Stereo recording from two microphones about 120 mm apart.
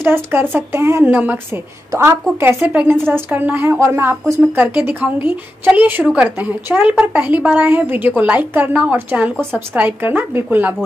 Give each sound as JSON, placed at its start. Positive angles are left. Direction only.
{"t": 0.0, "sound": "a woman's voice", "side_deg": -20}